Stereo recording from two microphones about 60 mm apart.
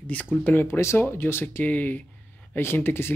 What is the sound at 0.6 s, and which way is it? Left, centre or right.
Speech, left.